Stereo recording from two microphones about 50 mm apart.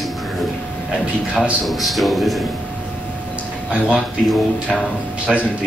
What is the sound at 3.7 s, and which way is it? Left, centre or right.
Speech, right.